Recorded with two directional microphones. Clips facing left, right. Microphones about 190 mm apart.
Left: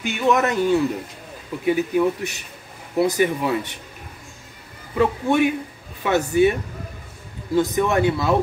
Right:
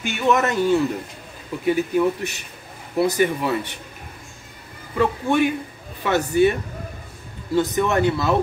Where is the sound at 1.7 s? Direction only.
15° left (ahead or behind).